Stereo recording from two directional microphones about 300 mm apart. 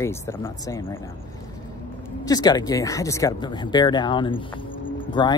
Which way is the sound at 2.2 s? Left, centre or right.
Centre.